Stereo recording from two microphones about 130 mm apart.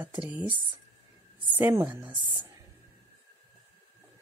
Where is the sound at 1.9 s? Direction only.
35° right (ahead or behind).